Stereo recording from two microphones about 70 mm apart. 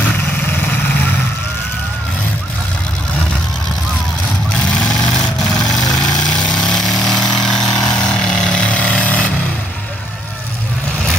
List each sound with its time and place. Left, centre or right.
0.0 s vehicle: left
4.6 s a sound: centre
6.4 s vehicle: centre